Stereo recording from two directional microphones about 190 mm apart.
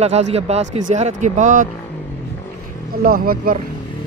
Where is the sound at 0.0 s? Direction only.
35° right (ahead or behind).